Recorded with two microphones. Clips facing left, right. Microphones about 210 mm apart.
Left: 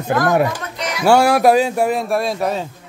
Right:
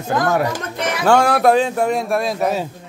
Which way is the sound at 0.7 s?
55° right (ahead or behind).